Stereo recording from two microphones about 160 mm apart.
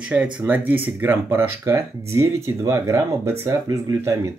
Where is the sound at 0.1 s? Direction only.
10° right (ahead or behind).